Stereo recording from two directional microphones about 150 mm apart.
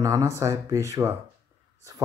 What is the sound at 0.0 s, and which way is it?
Speech, 20° right (ahead or behind).